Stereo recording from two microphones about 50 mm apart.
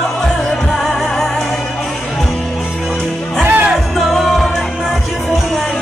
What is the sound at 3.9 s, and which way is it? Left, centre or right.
Music, centre.